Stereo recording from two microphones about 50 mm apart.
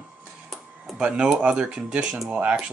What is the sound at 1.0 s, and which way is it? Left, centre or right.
Speech, centre.